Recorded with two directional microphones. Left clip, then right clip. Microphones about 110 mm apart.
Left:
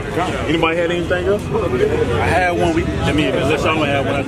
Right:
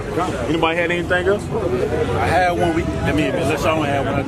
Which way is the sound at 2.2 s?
Centre (ahead or behind).